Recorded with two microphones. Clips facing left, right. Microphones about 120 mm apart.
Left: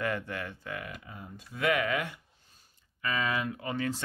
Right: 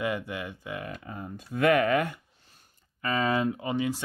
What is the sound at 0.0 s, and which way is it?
Speech, 15° right (ahead or behind).